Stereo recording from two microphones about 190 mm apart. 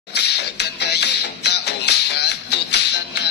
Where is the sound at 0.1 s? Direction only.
60° left (ahead or behind).